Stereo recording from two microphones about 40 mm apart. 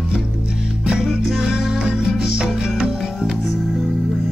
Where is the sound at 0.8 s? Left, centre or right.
Centre.